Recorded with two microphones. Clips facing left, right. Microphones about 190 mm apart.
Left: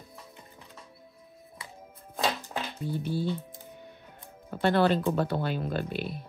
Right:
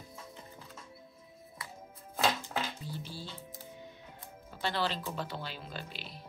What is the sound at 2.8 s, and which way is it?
Speech, 60° left (ahead or behind).